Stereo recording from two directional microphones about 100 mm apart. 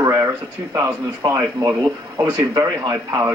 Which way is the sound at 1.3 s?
30° right (ahead or behind).